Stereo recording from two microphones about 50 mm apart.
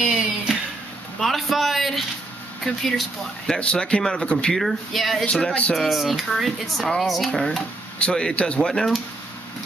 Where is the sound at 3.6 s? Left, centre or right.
Left.